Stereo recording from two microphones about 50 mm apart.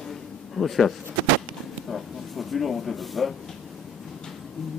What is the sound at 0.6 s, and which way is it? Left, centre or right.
Speech, centre.